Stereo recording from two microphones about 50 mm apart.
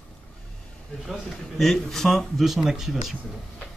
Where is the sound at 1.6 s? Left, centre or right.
Centre.